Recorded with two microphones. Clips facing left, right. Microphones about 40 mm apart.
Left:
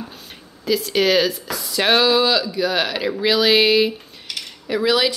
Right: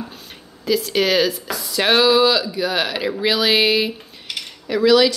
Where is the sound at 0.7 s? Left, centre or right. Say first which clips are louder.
Even; centre.